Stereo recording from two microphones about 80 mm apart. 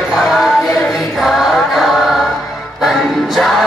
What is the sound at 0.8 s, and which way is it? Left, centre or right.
Chant, centre.